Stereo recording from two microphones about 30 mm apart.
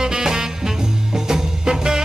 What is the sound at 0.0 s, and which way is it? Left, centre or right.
Swing music, right.